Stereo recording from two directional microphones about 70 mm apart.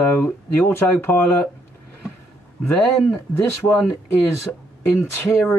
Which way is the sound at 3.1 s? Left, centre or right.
Left.